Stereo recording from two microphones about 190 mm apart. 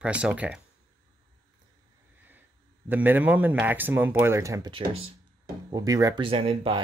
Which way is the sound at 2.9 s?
10° right (ahead or behind).